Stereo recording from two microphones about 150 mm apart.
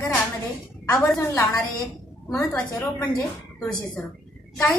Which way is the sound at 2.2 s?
10° left (ahead or behind).